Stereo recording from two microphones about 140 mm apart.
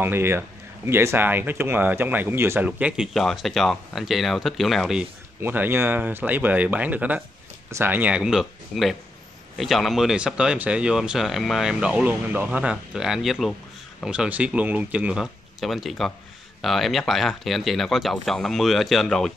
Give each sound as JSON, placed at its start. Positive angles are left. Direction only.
{"t": 0.0, "sound": "speech", "side_deg": -15}
{"t": 5.4, "sound": "speech", "side_deg": -15}